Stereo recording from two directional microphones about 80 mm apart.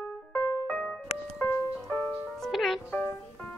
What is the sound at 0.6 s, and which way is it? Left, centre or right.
Music, centre.